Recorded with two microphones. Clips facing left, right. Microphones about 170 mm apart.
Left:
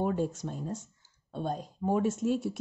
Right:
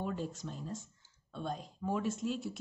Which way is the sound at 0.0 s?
50° left (ahead or behind).